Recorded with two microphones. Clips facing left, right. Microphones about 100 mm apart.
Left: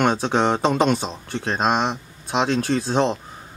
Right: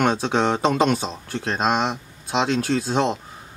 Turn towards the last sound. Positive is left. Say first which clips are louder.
# left 1 dB
turn(degrees=-5)  # may be behind; listen again after turning